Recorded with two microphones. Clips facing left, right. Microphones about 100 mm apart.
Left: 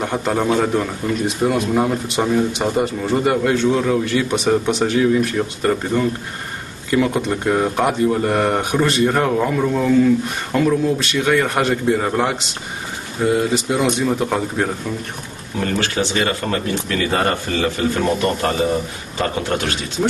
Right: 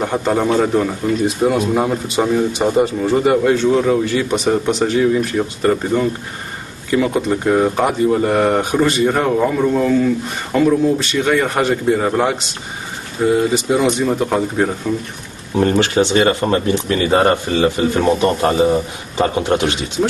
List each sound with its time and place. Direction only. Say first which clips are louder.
0.0 s speech: right 3 dB; centre (ahead or behind)
6.9 s speech: right 2 dB; centre (ahead or behind)
15.5 s a man's voice: right 7 dB; 25° right (ahead or behind)